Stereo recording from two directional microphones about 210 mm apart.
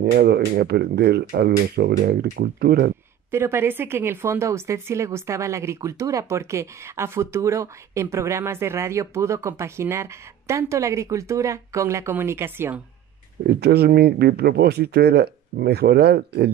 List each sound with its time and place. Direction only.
0.0 s speech: 50° right (ahead or behind)
3.3 s speech: 10° right (ahead or behind)
13.5 s speech: 50° right (ahead or behind)